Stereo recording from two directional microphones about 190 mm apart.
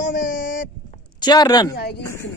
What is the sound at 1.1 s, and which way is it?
Speech, 20° left (ahead or behind).